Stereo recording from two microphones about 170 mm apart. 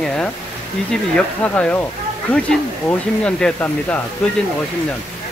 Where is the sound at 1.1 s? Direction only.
5° left (ahead or behind).